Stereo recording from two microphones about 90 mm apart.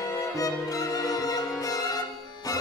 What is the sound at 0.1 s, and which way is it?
Violin, 40° left (ahead or behind).